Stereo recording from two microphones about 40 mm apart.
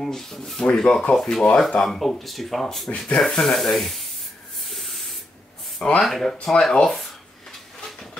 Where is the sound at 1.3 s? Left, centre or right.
Left.